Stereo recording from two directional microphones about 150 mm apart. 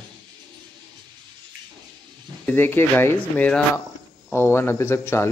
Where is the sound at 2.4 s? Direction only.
15° left (ahead or behind).